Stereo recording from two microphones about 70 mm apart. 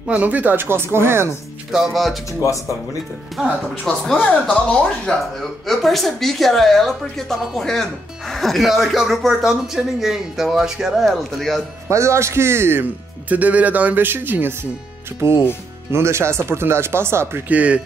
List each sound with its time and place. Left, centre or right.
0.0 s speech: right
1.7 s a woman's voice: centre
2.4 s speech: left
3.8 s a woman's voice: centre
4.2 s speech: centre
5.4 s a woman's voice: centre
11.9 s speech: right
15.9 s speech: right
17.5 s speech: centre